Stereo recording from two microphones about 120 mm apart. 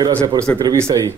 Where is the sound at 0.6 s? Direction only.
25° right (ahead or behind).